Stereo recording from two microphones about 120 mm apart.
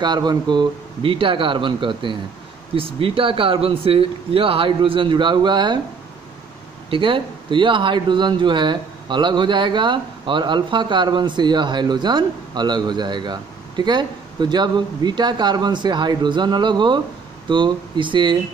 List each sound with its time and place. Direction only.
0.0 s speech: 35° right (ahead or behind)
6.9 s speech: 45° right (ahead or behind)